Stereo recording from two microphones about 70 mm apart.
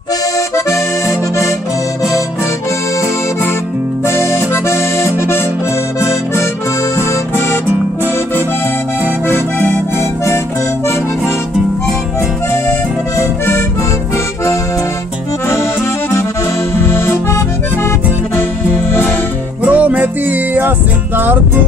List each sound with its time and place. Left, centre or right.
0.7 s accordion: left
4.0 s accordion: left
14.1 s accordion: left
16.8 s accordion: left
18.9 s music: left
19.6 s music: right